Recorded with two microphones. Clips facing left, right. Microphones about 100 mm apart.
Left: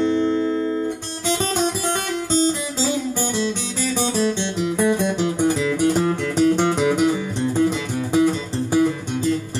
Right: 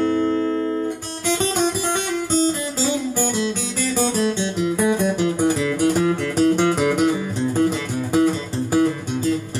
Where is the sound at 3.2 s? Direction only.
5° right (ahead or behind).